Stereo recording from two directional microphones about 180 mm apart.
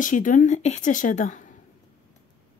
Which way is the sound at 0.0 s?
45° left (ahead or behind).